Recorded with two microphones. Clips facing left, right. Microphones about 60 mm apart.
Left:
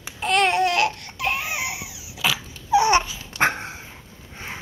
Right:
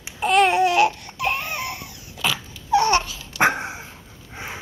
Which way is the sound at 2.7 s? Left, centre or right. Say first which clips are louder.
Left 1 dB; centre.